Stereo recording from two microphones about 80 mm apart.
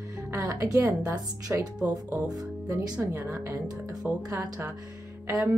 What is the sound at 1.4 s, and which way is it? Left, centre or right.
Speech, centre.